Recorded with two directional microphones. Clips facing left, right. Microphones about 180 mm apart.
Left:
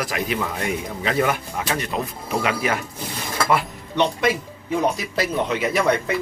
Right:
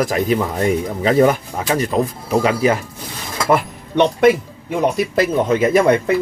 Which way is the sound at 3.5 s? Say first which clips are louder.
Right 8 dB; 55° right (ahead or behind).